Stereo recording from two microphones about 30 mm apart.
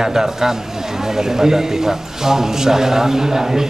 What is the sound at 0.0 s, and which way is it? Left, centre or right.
Speech, centre.